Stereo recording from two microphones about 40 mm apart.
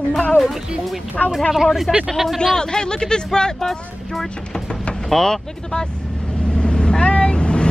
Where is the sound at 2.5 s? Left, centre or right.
Centre.